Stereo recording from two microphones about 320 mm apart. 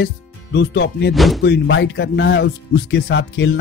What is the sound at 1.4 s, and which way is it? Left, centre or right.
A man's voice, left.